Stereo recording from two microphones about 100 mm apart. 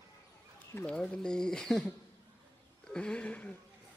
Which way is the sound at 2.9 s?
10° left (ahead or behind).